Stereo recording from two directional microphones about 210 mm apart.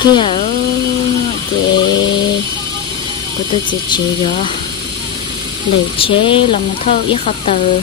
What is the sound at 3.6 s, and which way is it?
Speech, 20° left (ahead or behind).